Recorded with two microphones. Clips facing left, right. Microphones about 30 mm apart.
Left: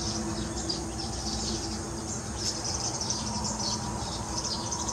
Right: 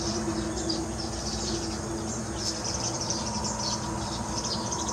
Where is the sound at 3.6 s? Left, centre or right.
Centre.